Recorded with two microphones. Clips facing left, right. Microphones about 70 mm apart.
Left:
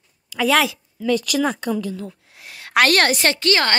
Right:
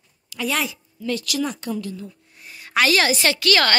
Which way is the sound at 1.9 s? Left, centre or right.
Left.